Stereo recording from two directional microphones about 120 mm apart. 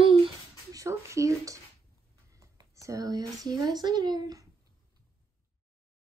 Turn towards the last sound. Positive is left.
turn(degrees=-35)  # may be behind; listen again after turning